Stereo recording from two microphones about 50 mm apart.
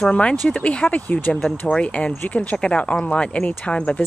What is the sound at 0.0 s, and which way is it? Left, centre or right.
Speech, left.